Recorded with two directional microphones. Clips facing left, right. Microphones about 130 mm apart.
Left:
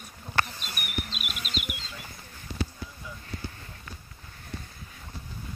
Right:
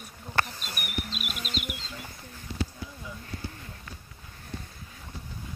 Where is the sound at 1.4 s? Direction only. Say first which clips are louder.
Right 1 dB; 40° right (ahead or behind).